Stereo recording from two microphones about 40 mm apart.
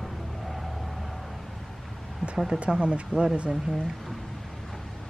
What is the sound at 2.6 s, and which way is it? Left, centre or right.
Speech, right.